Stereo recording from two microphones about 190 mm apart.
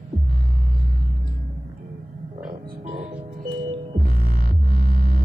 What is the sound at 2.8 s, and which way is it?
Music, 30° right (ahead or behind).